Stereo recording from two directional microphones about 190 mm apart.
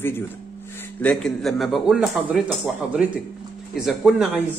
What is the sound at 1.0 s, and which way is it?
A man's voice, centre (ahead or behind).